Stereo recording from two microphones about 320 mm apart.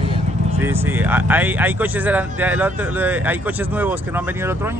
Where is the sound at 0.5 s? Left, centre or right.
Centre.